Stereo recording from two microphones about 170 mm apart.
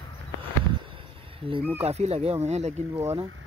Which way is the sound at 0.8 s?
30° right (ahead or behind).